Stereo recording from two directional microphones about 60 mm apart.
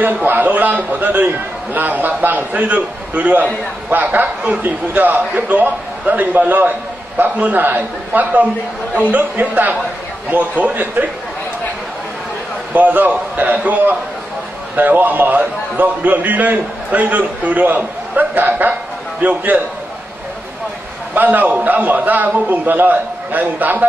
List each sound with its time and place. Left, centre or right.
0.0 s a man's voice: right
12.7 s a man's voice: right
21.1 s a man's voice: right